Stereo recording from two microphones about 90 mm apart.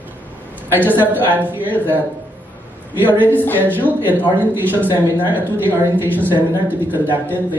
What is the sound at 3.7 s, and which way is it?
Speech, 20° right (ahead or behind).